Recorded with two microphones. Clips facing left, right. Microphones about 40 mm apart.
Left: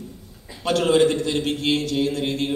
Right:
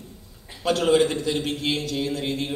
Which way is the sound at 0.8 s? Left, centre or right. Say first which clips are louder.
Left 3 dB; left.